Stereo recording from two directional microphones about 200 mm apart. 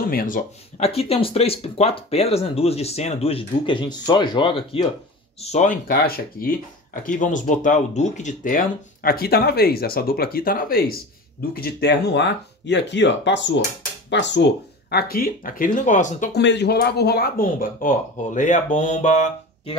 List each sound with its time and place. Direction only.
0.1 s speech: 45° left (ahead or behind); by 4.8 s 25° left (ahead or behind)
5.4 s speech: 35° left (ahead or behind)
16.3 s speech: 60° left (ahead or behind); by 19.8 s 30° left (ahead or behind)